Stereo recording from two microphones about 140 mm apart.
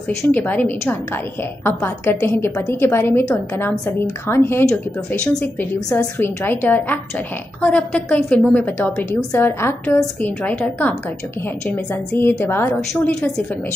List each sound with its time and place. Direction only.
0.3 s a woman's voice: 15° left (ahead or behind)